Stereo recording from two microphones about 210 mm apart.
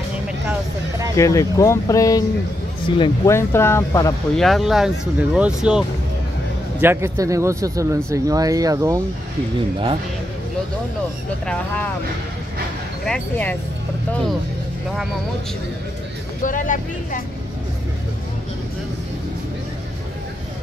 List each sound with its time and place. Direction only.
0.5 s vehicle: 15° right (ahead or behind)
1.1 s speech: 15° left (ahead or behind)
3.3 s speech: 10° left (ahead or behind)
4.4 s speech: centre (ahead or behind)
11.4 s speech: 5° left (ahead or behind)
13.0 s speech: 5° left (ahead or behind)
16.4 s speech: 40° left (ahead or behind)